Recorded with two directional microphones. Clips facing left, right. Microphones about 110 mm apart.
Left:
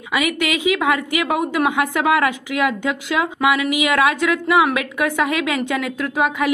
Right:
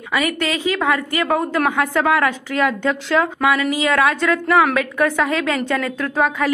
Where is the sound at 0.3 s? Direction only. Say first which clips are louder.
Left 1 dB; 15° left (ahead or behind).